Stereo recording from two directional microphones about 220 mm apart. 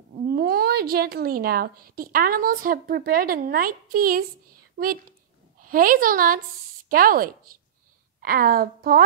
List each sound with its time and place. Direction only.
0.3 s a woman's voice: 45° right (ahead or behind)